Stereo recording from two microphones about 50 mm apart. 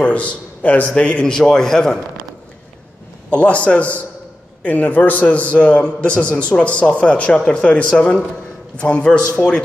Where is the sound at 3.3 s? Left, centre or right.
Left.